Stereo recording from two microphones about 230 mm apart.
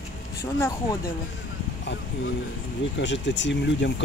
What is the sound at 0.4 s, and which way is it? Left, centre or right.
Speech, centre.